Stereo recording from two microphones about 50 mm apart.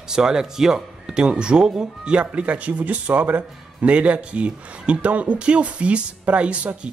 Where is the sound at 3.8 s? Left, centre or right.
Right.